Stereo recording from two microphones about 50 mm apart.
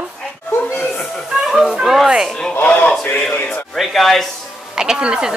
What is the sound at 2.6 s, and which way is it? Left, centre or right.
Speech, left.